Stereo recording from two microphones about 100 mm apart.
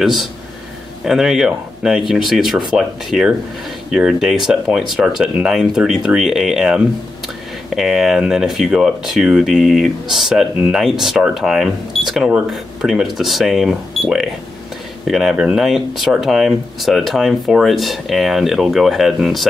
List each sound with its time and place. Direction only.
0.0 s speech: centre (ahead or behind)